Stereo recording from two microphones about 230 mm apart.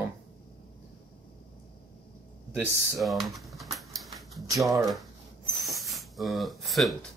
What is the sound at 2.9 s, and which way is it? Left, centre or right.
Typewriter, centre.